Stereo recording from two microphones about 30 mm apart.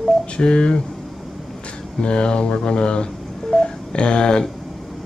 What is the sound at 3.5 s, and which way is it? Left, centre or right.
Telephone dialing, left.